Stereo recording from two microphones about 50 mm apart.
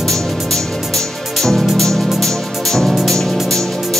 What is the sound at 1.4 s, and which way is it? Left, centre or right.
Music, centre.